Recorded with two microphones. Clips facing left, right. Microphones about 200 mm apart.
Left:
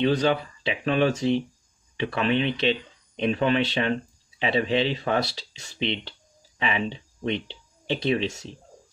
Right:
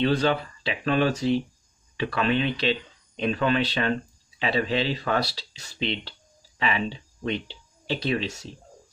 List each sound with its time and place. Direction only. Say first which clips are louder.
0.0 s speech: left 1 dB; 15° left (ahead or behind)